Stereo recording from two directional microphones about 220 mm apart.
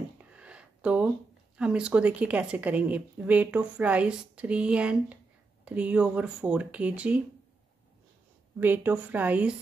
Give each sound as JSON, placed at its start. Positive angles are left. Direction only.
{"t": 0.2, "sound": "a sound", "side_deg": -5}
{"t": 1.6, "sound": "a woman's voice", "side_deg": -5}
{"t": 8.5, "sound": "a woman's voice", "side_deg": -10}